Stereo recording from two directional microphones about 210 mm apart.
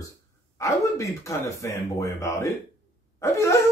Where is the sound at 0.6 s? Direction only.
15° left (ahead or behind).